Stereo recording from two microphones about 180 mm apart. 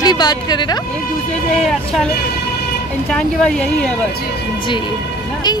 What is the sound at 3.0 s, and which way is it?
Speech, 5° left (ahead or behind).